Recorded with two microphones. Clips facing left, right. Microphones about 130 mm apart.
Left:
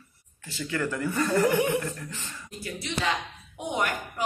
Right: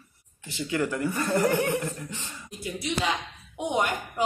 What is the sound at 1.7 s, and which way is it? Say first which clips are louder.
A woman's voice: even; 15° right (ahead or behind).